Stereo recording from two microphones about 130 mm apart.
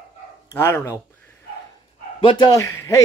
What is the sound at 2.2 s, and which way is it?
Speech, 35° left (ahead or behind).